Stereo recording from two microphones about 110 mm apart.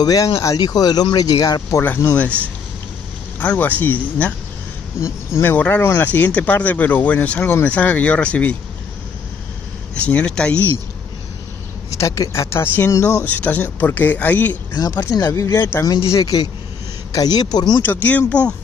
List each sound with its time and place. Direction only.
0.0 s speech: 35° left (ahead or behind)
1.8 s speech: 20° left (ahead or behind)
3.3 s speech: 15° left (ahead or behind)
5.0 s speech: 20° left (ahead or behind)
9.9 s speech: 10° left (ahead or behind)
11.9 s speech: 30° left (ahead or behind)
14.7 s speech: 35° left (ahead or behind)
17.8 s speech: 15° left (ahead or behind)